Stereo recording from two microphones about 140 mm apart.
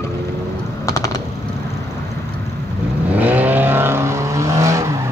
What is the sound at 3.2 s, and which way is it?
Vehicle, 10° right (ahead or behind).